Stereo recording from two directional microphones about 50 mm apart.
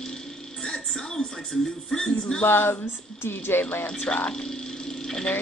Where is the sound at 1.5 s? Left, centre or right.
Centre.